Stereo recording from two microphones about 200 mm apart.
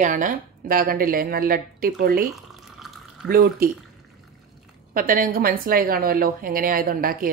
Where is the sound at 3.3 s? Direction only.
45° right (ahead or behind).